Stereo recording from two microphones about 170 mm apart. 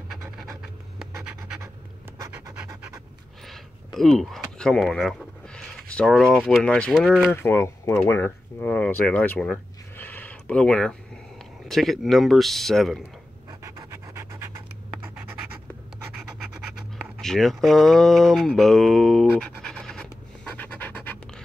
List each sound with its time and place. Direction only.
0.1 s scratch: centre (ahead or behind)
2.1 s scratch: 20° right (ahead or behind)
3.4 s speech: centre (ahead or behind)
7.4 s speech: 15° left (ahead or behind)
13.5 s pant: 20° right (ahead or behind)
17.2 s speech: centre (ahead or behind)
20.5 s scratch: 10° left (ahead or behind)